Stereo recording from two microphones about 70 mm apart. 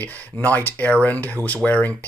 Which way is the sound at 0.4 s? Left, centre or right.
Left.